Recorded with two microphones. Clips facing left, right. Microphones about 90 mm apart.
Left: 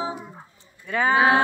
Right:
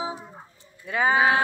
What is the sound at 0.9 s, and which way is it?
Speech, 10° right (ahead or behind).